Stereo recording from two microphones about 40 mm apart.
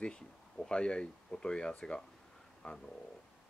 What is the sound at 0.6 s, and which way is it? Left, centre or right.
Speech, left.